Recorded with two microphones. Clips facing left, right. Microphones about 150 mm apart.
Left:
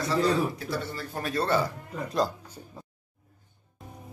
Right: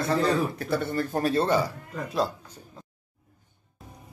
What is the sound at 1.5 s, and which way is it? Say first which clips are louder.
Speech: right 2 dB; 5° right (ahead or behind).